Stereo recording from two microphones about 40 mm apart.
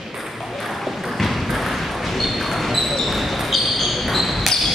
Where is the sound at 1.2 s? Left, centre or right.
Centre.